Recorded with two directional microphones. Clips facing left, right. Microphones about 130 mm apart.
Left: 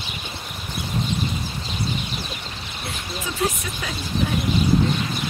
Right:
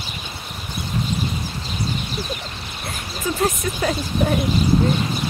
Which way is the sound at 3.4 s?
45° right (ahead or behind).